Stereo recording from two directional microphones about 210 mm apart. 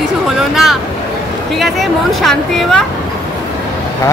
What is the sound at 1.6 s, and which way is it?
Speech, centre (ahead or behind).